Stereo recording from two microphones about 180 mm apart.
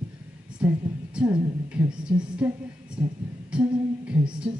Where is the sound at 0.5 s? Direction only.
5° right (ahead or behind).